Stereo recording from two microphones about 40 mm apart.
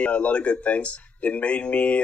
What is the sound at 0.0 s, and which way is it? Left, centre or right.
Speech, left.